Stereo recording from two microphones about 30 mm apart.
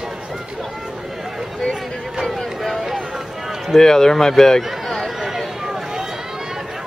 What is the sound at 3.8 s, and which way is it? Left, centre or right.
A man's voice, centre.